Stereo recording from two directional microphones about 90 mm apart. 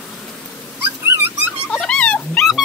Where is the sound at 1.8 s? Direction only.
10° left (ahead or behind).